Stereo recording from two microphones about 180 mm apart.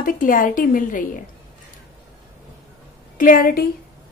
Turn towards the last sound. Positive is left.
turn(degrees=50)  # may be behind; listen again after turning